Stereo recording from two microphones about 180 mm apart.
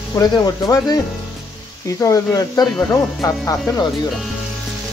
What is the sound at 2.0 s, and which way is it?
Speech, 20° left (ahead or behind).